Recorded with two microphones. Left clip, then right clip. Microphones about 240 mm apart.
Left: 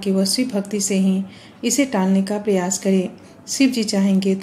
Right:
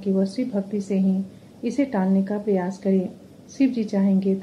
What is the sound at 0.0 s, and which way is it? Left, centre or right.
Speech, left.